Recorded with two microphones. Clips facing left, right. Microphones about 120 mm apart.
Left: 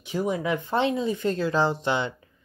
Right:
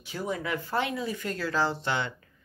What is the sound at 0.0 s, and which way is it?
Speech, 20° left (ahead or behind).